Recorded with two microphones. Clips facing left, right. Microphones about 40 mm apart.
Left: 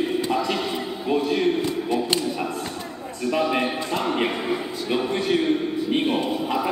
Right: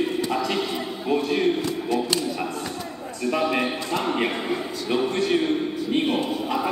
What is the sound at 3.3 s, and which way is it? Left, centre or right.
A man's voice, centre.